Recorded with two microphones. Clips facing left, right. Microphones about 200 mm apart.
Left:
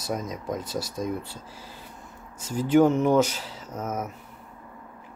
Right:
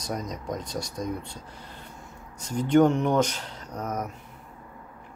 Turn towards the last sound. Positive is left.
turn(degrees=5)  # may be behind; listen again after turning